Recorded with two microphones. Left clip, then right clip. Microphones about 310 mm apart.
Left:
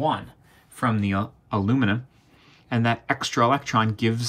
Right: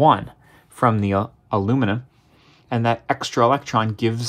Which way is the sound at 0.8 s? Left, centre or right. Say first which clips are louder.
Right 6 dB; right.